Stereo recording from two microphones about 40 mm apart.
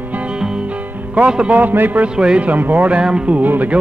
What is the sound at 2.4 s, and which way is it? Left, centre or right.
Speech, right.